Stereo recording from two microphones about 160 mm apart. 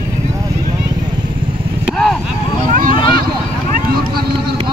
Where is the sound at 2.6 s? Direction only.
60° right (ahead or behind).